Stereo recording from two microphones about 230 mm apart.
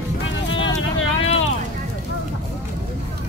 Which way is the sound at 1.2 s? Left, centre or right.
Left.